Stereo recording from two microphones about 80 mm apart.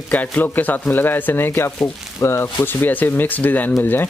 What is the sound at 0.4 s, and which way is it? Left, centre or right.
Speech, left.